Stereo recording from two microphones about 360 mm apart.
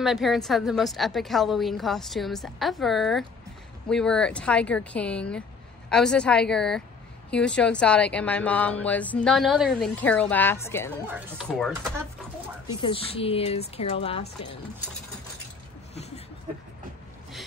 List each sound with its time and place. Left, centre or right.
0.0 s speech: centre
12.8 s speech: centre